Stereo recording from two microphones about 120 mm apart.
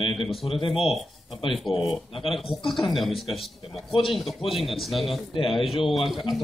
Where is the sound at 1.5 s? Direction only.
Centre (ahead or behind).